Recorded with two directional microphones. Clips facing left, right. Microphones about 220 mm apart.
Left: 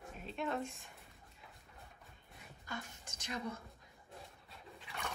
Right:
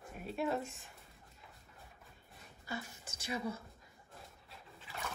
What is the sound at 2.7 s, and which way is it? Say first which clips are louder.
Speech: right 3 dB; 5° right (ahead or behind).